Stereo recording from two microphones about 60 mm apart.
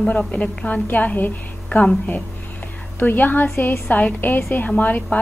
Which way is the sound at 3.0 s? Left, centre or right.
Left.